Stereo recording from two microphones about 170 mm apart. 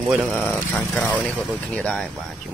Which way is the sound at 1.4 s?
5° right (ahead or behind).